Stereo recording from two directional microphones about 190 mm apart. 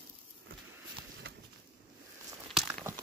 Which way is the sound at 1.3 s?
55° right (ahead or behind).